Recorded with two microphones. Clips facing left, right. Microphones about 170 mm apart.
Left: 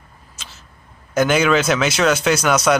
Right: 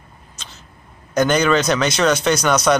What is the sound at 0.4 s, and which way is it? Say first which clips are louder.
Cat: even; 5° left (ahead or behind).